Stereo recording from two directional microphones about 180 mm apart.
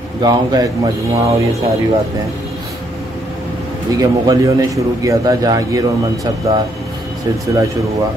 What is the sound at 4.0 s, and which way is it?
A man's voice, 20° right (ahead or behind).